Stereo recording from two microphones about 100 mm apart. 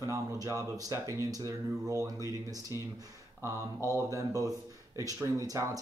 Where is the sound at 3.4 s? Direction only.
30° right (ahead or behind).